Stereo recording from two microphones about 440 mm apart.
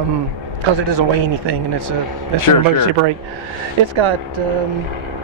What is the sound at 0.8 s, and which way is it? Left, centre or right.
Speech, right.